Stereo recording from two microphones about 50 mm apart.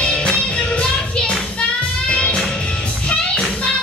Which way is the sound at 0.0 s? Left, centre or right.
Centre.